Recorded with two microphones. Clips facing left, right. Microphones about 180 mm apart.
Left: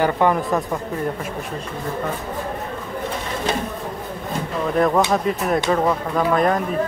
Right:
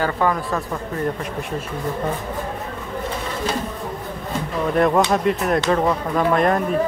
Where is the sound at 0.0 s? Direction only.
20° left (ahead or behind).